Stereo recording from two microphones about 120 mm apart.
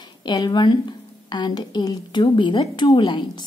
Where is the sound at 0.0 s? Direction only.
35° left (ahead or behind).